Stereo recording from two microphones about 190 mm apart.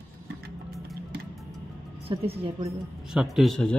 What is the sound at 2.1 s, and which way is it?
Speech, 30° right (ahead or behind).